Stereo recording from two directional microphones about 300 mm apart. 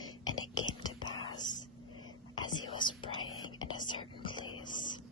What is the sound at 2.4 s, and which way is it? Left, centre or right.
Whispering, centre.